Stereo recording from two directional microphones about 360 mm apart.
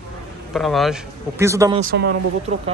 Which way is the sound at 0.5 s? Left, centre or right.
Centre.